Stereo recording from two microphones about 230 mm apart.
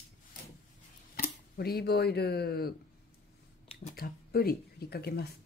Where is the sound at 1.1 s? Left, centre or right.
Left.